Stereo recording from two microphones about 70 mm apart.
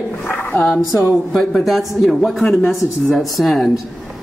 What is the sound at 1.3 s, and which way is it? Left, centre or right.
Speech, centre.